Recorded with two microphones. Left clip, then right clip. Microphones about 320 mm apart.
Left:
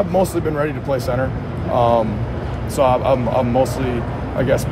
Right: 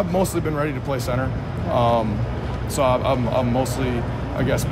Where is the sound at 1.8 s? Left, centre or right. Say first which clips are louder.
Left 4 dB; centre.